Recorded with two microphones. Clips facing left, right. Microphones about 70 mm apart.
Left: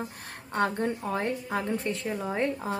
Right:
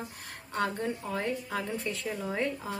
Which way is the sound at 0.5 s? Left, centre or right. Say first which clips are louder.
Left 4 dB; left.